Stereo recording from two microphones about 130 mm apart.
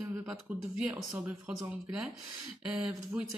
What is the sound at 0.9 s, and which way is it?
Speech, 20° right (ahead or behind).